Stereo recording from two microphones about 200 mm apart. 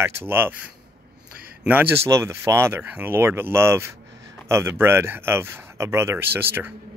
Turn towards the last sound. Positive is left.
turn(degrees=-10)  # may be behind; listen again after turning